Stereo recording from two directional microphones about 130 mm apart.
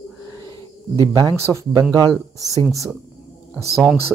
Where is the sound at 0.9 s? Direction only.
30° right (ahead or behind).